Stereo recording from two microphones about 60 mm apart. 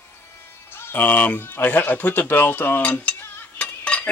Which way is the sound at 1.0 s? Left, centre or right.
Left.